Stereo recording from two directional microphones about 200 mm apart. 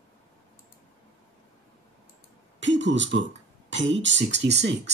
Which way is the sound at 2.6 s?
65° right (ahead or behind).